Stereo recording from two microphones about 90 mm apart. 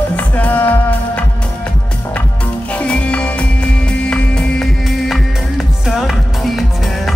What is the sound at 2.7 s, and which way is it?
Music, 15° left (ahead or behind).